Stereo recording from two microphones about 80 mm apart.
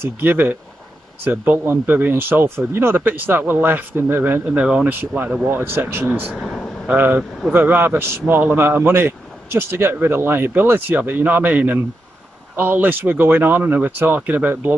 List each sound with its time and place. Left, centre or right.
0.0 s a man's voice: right
4.5 s a man's voice: centre
6.4 s air conditioning: centre
6.9 s a man's voice: right